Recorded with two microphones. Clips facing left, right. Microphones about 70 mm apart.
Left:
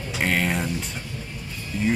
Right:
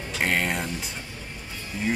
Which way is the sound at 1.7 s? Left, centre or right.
Right.